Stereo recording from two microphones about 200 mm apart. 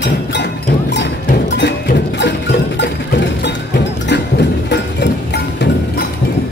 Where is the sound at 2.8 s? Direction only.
60° left (ahead or behind).